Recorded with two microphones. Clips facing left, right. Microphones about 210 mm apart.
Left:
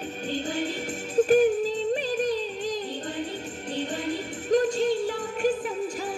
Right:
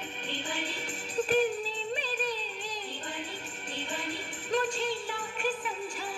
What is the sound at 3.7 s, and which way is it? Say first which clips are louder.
Music: left 8 dB; 40° left (ahead or behind).